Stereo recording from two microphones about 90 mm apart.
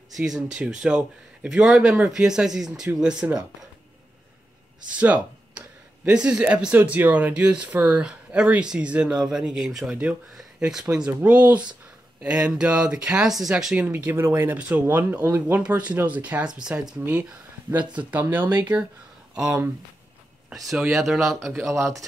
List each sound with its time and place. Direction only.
0.1 s speech: 5° right (ahead or behind)
4.9 s a sound: 15° right (ahead or behind)
6.2 s speech: 10° right (ahead or behind)
13.8 s speech: 20° right (ahead or behind)
17.0 s speech: 20° right (ahead or behind)
19.3 s speech: 10° right (ahead or behind)
20.7 s speech: 5° right (ahead or behind)